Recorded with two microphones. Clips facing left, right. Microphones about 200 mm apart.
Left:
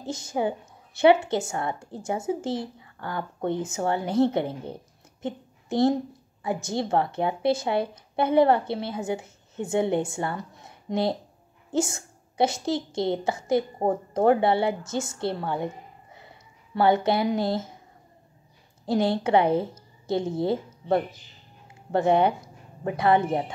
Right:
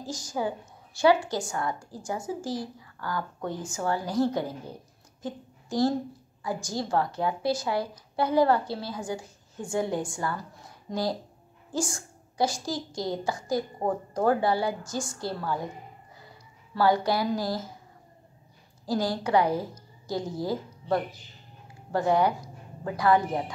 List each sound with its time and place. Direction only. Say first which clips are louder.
0.0 s a woman's voice: left 4 dB; 25° left (ahead or behind)
16.2 s a sound: left 1 dB; 25° left (ahead or behind)
18.9 s a woman's voice: left 4 dB; 25° left (ahead or behind)